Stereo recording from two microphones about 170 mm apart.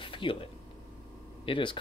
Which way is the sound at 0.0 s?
30° left (ahead or behind).